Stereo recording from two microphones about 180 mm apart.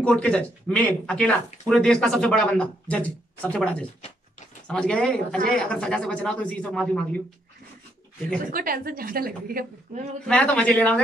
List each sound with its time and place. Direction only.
0.0 s speech: 5° left (ahead or behind)
8.5 s a woman's voice: 55° right (ahead or behind)
10.2 s speech: 5° left (ahead or behind)